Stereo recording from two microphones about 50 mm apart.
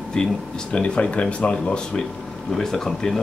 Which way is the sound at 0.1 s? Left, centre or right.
Centre.